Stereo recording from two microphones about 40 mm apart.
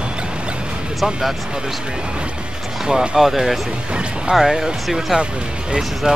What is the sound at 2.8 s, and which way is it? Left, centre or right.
Speech, centre.